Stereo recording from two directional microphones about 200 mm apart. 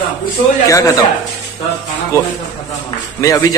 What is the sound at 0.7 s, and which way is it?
Speech, 15° left (ahead or behind).